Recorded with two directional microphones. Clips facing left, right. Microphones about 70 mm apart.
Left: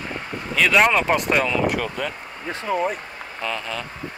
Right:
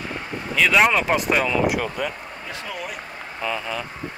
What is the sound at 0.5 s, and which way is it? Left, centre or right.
Speech, centre.